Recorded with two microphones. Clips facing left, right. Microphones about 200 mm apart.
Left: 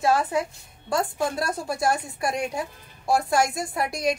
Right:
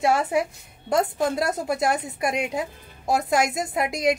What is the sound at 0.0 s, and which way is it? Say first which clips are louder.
A woman's voice: right 1 dB; 20° right (ahead or behind).